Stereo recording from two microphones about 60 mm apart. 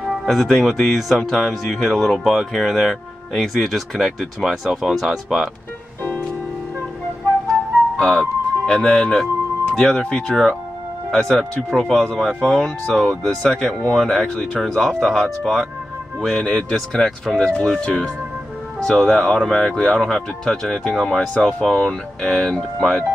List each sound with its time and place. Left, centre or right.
0.0 s music: centre
0.3 s speech: centre
8.0 s speech: centre
17.5 s speech: centre